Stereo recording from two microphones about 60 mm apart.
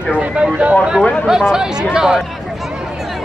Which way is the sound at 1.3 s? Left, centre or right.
Centre.